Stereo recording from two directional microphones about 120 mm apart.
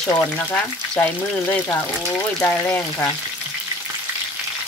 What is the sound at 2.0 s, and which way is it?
Speech, 20° left (ahead or behind).